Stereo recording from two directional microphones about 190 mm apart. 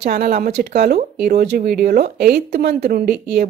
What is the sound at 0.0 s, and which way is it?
Speech, 50° right (ahead or behind).